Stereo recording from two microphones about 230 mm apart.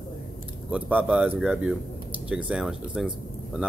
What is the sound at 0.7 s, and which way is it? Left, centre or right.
Speech, centre.